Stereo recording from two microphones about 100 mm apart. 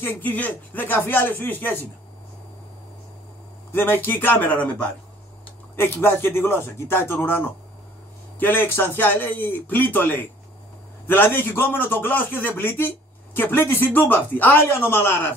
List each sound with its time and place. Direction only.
0.0 s speech: 20° left (ahead or behind)
3.7 s speech: 20° left (ahead or behind)